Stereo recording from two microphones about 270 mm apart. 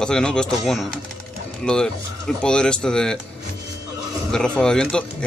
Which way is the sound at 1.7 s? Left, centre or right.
Centre.